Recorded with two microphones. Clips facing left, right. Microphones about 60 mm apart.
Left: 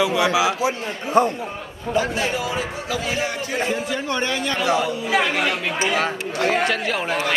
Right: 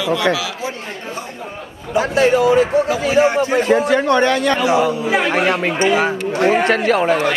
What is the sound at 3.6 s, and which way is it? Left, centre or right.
Speech, right.